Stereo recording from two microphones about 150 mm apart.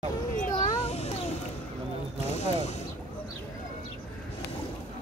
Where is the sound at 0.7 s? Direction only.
45° left (ahead or behind).